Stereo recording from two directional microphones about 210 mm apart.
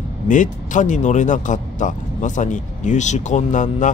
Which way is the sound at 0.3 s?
35° left (ahead or behind).